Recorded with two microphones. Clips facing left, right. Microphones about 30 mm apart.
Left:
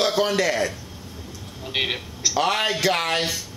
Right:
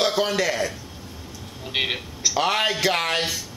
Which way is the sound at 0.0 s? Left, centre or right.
Centre.